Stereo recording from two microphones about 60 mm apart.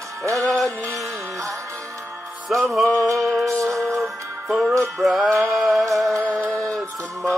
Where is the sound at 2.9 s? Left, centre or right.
Right.